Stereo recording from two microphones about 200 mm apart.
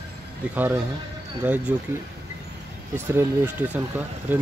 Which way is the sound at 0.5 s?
10° right (ahead or behind).